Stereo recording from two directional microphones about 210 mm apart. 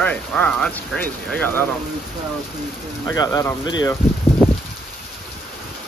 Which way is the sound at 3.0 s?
15° left (ahead or behind).